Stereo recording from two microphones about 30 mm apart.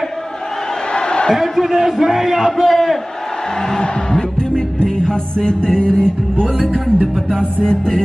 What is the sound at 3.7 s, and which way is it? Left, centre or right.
Music, left.